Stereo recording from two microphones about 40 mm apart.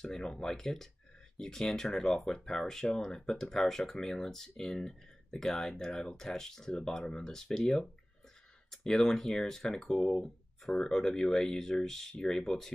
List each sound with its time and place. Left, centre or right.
0.0 s speech: centre